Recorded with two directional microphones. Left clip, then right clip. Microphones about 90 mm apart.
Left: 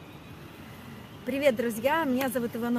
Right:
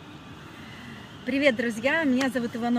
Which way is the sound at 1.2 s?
40° left (ahead or behind).